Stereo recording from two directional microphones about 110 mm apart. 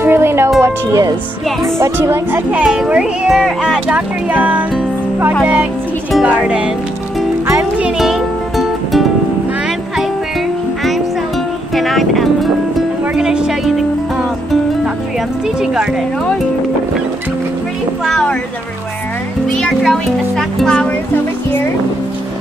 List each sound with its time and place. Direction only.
0.0 s music: 20° right (ahead or behind)
1.6 s speech: 25° right (ahead or behind)
8.0 s music: centre (ahead or behind)
11.7 s music: centre (ahead or behind)
15.6 s a child's voice: 5° right (ahead or behind)
18.0 s a child's voice: 5° left (ahead or behind)
19.5 s a child's voice: 5° left (ahead or behind)